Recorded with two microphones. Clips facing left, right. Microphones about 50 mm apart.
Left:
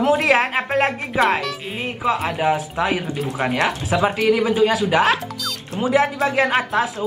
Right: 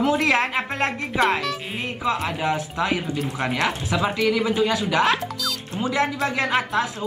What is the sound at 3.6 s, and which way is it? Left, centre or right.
Speech, left.